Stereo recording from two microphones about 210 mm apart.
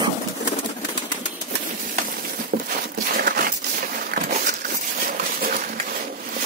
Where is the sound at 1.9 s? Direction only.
45° right (ahead or behind).